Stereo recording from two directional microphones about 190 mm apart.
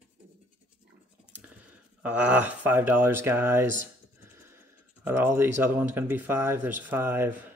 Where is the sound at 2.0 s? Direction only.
10° right (ahead or behind).